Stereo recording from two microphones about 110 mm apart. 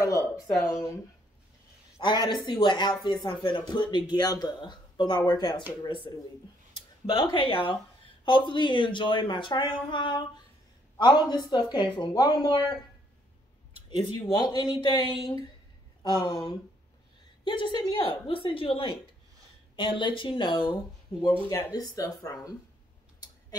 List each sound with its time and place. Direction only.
0.0 s a sound: 30° left (ahead or behind)
0.7 s speech: 30° left (ahead or behind)
2.0 s speech: 40° left (ahead or behind)
14.2 s speech: 40° left (ahead or behind)
17.5 s speech: 45° left (ahead or behind)
21.7 s speech: 35° left (ahead or behind)